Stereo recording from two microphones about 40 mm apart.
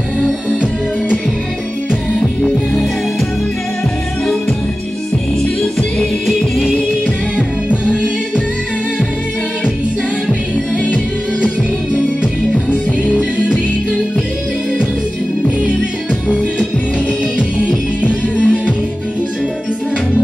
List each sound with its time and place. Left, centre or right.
18.4 s music: left